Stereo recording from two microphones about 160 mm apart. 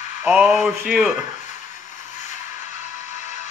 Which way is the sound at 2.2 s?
50° left (ahead or behind).